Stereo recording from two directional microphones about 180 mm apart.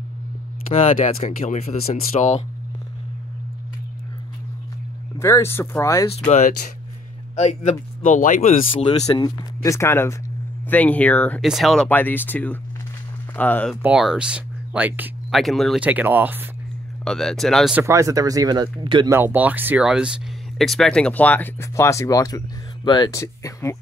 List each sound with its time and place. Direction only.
0.7 s speech: 40° left (ahead or behind)
5.2 s speech: 15° left (ahead or behind)
6.1 s speech: 40° left (ahead or behind)
9.0 s speech: 20° left (ahead or behind)
13.8 s speech: 5° right (ahead or behind)
17.0 s speech: 5° left (ahead or behind)
17.8 s speech: 20° right (ahead or behind)
19.1 s speech: 10° right (ahead or behind); by 23.8 s 15° left (ahead or behind)